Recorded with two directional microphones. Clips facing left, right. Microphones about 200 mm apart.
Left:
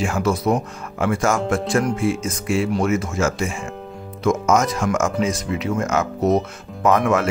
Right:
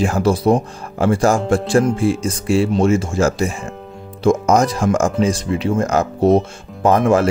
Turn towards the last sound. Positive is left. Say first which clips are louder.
# right 4 dB
turn(degrees=-30)  # may be behind; listen again after turning